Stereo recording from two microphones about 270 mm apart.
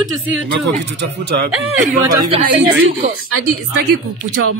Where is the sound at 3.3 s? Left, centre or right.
Right.